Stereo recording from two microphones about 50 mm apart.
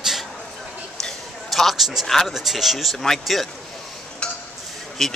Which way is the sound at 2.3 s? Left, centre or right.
Centre.